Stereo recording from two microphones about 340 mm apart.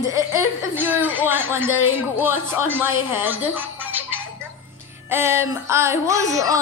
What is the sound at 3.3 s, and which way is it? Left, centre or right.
Music, centre.